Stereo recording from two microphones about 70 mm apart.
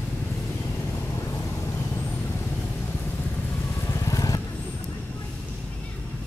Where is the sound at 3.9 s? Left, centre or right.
Left.